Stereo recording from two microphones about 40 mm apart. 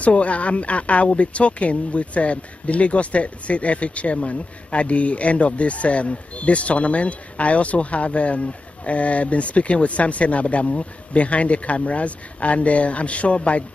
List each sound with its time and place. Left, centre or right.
0.0 s speech: left